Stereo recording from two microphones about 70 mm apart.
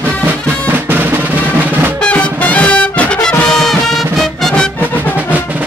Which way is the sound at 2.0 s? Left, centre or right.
Centre.